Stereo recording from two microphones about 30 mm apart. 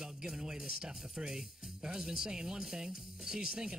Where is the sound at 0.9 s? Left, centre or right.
Centre.